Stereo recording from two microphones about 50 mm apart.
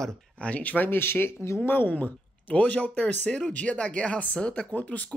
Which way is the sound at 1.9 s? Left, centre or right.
Left.